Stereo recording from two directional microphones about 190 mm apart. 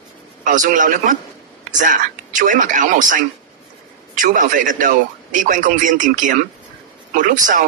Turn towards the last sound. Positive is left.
turn(degrees=-45)  # may be behind; listen again after turning